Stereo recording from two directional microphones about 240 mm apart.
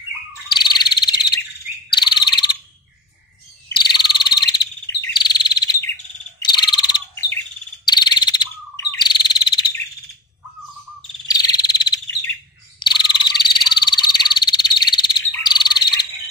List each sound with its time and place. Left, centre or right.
0.5 s frog: centre
1.9 s bird: centre
3.7 s frog: centre
6.4 s bird: centre
11.2 s frog: centre